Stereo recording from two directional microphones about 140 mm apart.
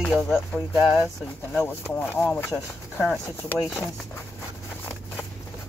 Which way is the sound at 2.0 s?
15° left (ahead or behind).